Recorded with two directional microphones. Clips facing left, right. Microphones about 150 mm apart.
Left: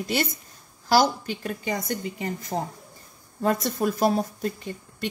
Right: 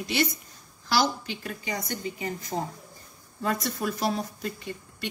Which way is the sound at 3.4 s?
45° left (ahead or behind).